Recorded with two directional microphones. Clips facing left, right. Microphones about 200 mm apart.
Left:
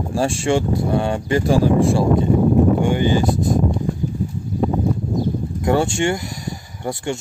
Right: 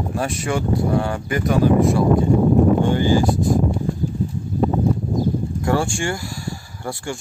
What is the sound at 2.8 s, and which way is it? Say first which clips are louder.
Speech: even; 15° left (ahead or behind).